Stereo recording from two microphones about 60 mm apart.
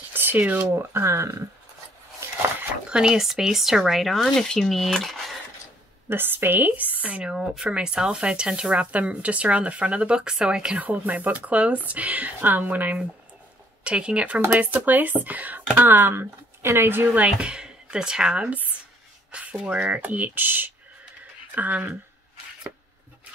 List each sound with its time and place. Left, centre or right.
0.1 s a sound: right
0.6 s speech: right
2.9 s speech: centre
6.0 s speech: right; by 10.8 s centre
10.8 s speech: right
17.2 s speech: centre